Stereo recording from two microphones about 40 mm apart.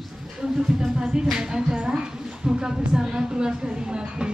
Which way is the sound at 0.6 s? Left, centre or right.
Centre.